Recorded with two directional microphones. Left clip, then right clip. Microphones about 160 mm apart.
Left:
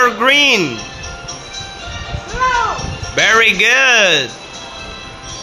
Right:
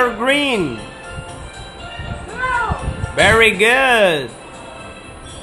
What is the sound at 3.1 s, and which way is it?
Speech, 10° right (ahead or behind).